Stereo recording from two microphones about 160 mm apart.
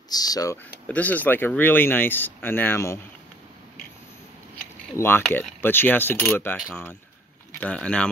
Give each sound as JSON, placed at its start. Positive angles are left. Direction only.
{"t": 0.1, "sound": "speech", "side_deg": 25}
{"t": 0.8, "sound": "speech", "side_deg": 10}
{"t": 4.9, "sound": "speech", "side_deg": 15}